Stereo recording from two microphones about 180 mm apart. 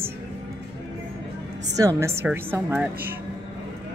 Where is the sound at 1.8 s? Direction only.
15° right (ahead or behind).